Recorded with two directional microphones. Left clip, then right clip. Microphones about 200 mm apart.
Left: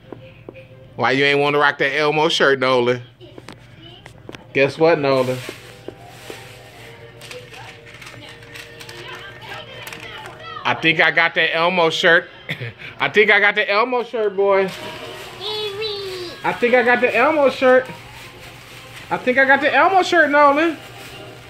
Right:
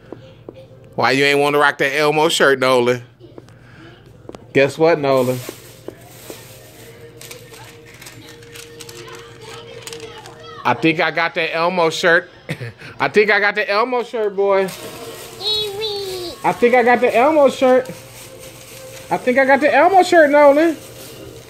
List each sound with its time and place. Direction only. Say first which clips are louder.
0.9 s speech: right 2 dB; 55° right (ahead or behind)
4.5 s speech: right 1 dB; 45° right (ahead or behind)
10.6 s speech: even; 35° right (ahead or behind)
16.4 s speech: right 2 dB; 30° right (ahead or behind)
19.0 s speech: right 1 dB; 35° right (ahead or behind)